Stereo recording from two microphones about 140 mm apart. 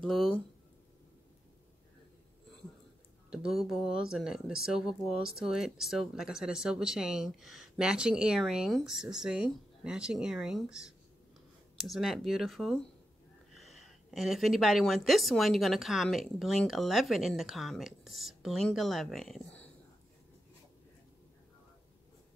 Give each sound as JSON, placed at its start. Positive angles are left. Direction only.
{"t": 0.0, "sound": "speech", "side_deg": 0}
{"t": 3.3, "sound": "speech", "side_deg": 0}